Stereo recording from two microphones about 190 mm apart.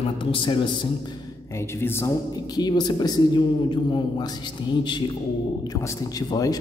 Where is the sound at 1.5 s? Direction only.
15° left (ahead or behind).